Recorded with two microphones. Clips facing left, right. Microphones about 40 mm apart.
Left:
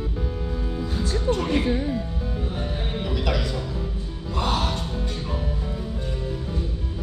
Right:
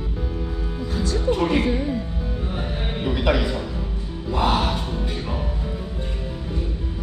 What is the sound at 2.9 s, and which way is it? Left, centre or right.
Music, centre.